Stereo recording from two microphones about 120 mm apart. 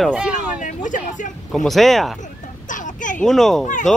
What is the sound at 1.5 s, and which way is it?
Speech, centre (ahead or behind).